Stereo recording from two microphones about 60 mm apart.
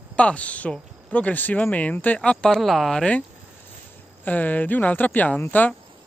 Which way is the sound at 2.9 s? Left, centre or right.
Centre.